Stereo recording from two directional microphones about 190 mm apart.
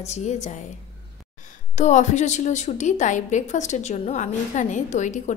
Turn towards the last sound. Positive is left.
turn(degrees=40)  # may be behind; listen again after turning